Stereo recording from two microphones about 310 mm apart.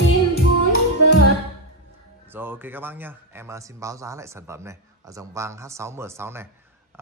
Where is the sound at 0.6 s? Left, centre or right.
Left.